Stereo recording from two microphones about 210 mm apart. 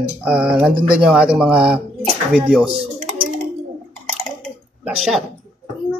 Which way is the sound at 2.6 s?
25° right (ahead or behind).